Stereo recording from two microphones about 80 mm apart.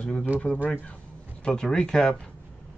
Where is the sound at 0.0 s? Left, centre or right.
Centre.